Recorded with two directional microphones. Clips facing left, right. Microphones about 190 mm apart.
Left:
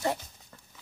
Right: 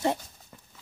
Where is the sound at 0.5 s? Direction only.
15° right (ahead or behind).